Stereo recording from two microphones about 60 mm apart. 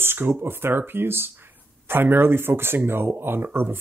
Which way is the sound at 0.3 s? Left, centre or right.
Right.